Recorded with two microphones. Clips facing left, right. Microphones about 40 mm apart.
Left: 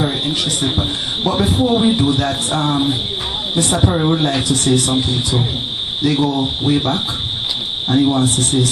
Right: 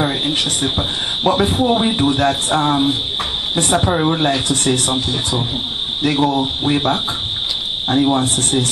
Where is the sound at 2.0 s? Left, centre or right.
Right.